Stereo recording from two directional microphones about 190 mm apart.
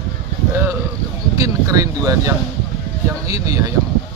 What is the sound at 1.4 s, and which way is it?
Speech, 15° right (ahead or behind).